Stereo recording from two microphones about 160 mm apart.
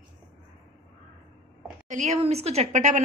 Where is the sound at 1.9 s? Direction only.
45° right (ahead or behind).